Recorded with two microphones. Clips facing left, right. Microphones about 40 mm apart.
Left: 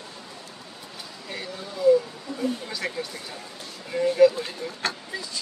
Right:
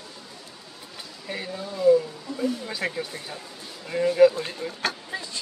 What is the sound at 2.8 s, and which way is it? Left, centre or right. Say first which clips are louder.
Speech: right 2 dB; right.